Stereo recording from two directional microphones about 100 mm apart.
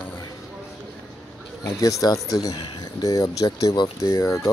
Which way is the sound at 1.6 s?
35° left (ahead or behind).